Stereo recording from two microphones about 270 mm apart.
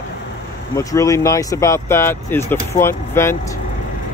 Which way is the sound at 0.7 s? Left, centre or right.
Centre.